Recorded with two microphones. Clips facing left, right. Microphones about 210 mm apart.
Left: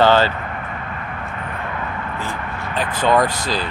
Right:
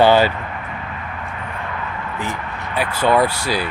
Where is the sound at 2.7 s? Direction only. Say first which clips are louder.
Right 1 dB; 10° right (ahead or behind).